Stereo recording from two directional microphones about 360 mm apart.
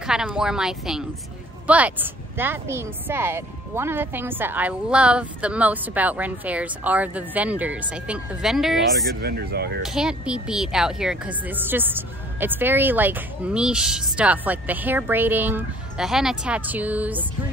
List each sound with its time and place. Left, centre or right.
0.0 s speech: centre
9.0 s speech: right
9.8 s speech: centre